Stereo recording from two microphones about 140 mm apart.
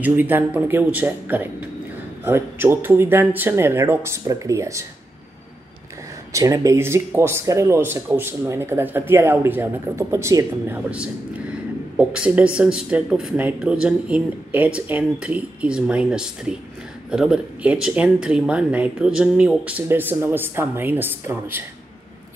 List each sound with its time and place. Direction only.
0.0 s speech: 15° right (ahead or behind)
6.3 s speech: 25° right (ahead or behind)
10.9 s speech: 10° right (ahead or behind)